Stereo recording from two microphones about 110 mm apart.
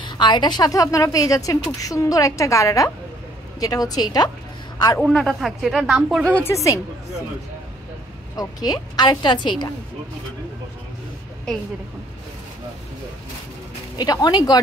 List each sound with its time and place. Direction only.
0.0 s a woman's voice: 45° left (ahead or behind)
5.0 s speech: 5° left (ahead or behind)
6.2 s a woman's voice: 15° left (ahead or behind)
6.5 s a woman's voice: 30° left (ahead or behind)
8.4 s a woman's voice: 35° left (ahead or behind)
13.9 s a woman's voice: 35° left (ahead or behind)